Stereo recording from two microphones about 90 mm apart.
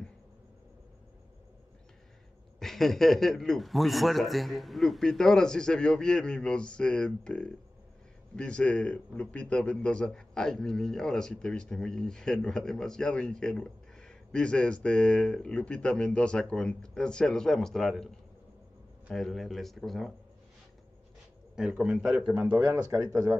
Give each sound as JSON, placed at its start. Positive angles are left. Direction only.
{"t": 2.6, "sound": "a man's voice", "side_deg": 5}
{"t": 19.1, "sound": "speech", "side_deg": 5}
{"t": 21.5, "sound": "a man's voice", "side_deg": -10}
{"t": 22.7, "sound": "speech", "side_deg": -35}